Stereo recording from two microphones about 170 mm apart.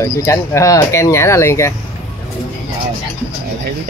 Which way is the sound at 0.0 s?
15° left (ahead or behind).